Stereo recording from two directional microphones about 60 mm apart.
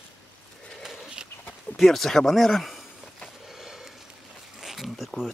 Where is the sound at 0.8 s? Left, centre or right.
Centre.